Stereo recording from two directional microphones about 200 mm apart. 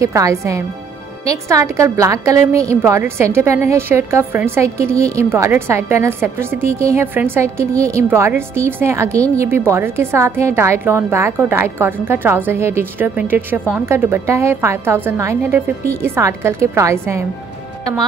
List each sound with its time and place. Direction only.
0.0 s a woman's voice: 15° right (ahead or behind)